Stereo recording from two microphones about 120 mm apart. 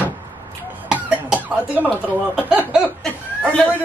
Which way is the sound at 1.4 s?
15° right (ahead or behind).